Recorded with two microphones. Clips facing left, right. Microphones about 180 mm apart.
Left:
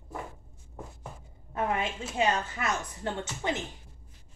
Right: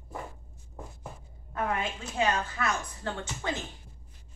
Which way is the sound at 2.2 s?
20° left (ahead or behind).